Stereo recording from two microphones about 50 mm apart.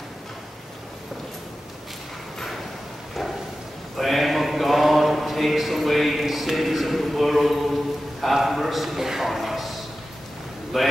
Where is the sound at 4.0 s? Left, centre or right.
Centre.